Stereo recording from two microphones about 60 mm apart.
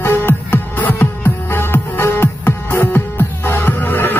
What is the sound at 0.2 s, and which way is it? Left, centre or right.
Music, left.